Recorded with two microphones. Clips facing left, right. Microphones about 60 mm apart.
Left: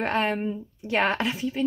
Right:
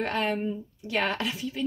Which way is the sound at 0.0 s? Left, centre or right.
Left.